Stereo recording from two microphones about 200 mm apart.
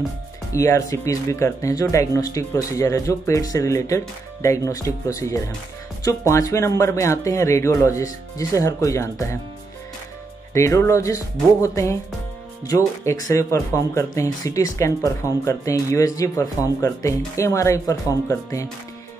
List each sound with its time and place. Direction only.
0.5 s speech: 15° left (ahead or behind)
10.5 s speech: 15° left (ahead or behind)